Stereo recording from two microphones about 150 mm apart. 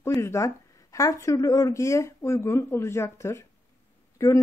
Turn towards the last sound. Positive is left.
turn(degrees=20)  # may be behind; listen again after turning